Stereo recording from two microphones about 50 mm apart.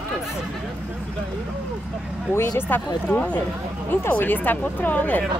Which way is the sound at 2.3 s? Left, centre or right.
Left.